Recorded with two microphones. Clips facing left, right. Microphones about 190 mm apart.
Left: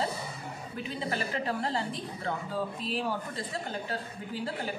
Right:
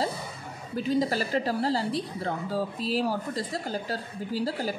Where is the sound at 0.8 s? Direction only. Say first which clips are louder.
Right 8 dB; 35° right (ahead or behind).